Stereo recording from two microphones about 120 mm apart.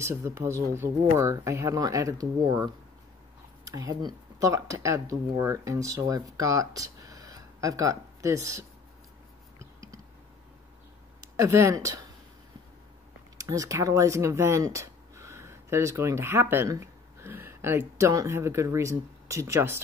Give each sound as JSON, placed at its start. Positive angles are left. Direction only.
{"t": 0.0, "sound": "speech", "side_deg": -20}
{"t": 9.6, "sound": "a sound", "side_deg": -25}
{"t": 11.3, "sound": "speech", "side_deg": -25}
{"t": 13.4, "sound": "speech", "side_deg": -30}